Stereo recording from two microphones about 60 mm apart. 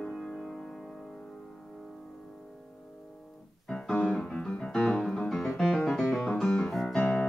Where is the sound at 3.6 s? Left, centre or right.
Centre.